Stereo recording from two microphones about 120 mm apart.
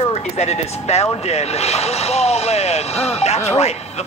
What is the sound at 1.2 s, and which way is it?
Vehicle, 65° left (ahead or behind).